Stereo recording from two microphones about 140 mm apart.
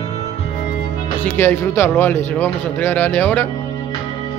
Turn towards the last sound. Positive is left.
turn(degrees=15)  # may be behind; listen again after turning